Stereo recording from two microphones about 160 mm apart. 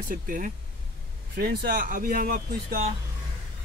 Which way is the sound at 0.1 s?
55° right (ahead or behind).